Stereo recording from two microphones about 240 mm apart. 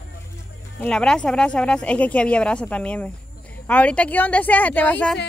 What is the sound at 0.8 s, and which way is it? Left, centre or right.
A woman's voice, centre.